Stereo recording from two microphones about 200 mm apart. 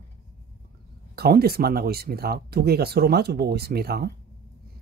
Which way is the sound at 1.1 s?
50° right (ahead or behind).